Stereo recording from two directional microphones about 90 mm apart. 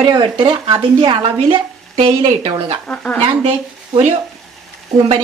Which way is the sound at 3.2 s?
90° right.